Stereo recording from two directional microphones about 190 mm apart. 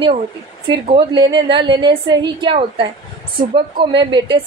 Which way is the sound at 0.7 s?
25° right (ahead or behind).